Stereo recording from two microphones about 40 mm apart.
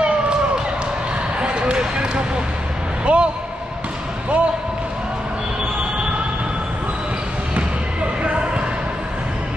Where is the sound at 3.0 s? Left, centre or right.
Right.